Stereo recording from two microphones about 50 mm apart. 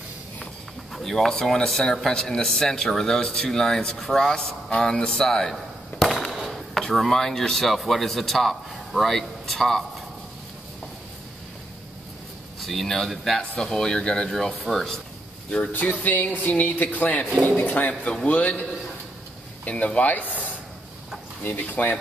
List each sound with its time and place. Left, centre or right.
0.9 s speech: centre
6.3 s chop: centre
6.7 s speech: centre
12.5 s speech: centre
14.3 s speech: centre
15.7 s a man's voice: left
19.7 s speech: left